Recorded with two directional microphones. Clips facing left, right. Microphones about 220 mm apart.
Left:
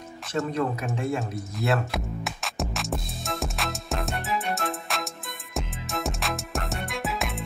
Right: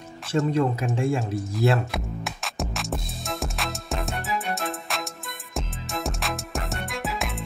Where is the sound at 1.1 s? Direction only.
30° right (ahead or behind).